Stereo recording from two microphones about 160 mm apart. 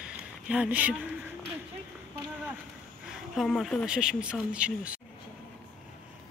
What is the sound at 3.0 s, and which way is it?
Speech, centre (ahead or behind).